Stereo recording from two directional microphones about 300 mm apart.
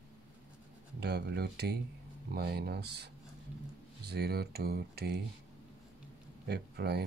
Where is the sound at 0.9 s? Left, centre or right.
Right.